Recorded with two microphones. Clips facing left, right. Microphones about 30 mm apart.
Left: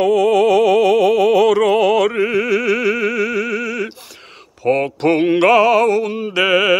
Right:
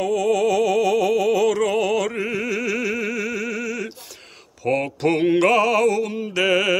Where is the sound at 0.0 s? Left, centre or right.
Left.